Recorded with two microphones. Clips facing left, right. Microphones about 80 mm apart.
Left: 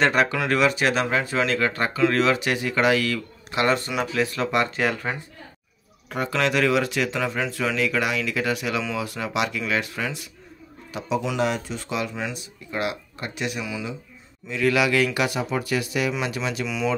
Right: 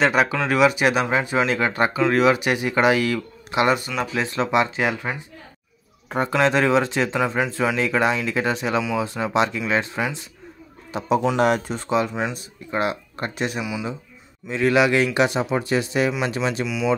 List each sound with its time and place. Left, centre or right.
0.0 s speech: centre; by 4.5 s right
4.5 s speech: centre
6.0 s speech: right
11.3 s speech: right
11.9 s speech: right
13.6 s speech: centre
14.5 s speech: right
16.6 s speech: centre